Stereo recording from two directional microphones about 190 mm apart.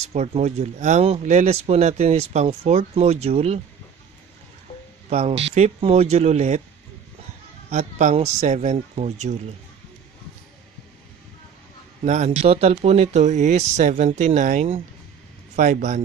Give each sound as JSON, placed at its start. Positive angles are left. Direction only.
{"t": 0.1, "sound": "speech", "side_deg": -35}
{"t": 5.1, "sound": "speech", "side_deg": -35}
{"t": 7.7, "sound": "speech", "side_deg": -40}
{"t": 12.0, "sound": "speech", "side_deg": -35}